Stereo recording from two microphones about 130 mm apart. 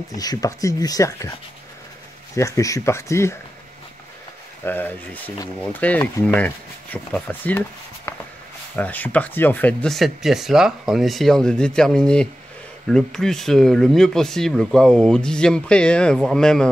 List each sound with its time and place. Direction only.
0.1 s speech: 30° left (ahead or behind)
2.3 s speech: 25° left (ahead or behind)
4.6 s speech: 15° left (ahead or behind)
8.7 s speech: 10° left (ahead or behind)